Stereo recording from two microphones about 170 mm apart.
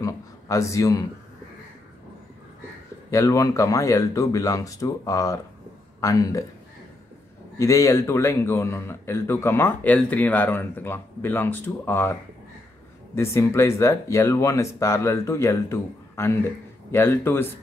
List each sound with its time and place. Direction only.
0.0 s a sound: 20° left (ahead or behind)
3.1 s speech: 20° left (ahead or behind)
7.5 s speech: 20° left (ahead or behind)